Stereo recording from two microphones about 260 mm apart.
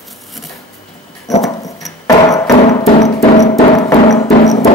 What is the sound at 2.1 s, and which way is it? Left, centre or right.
Music, centre.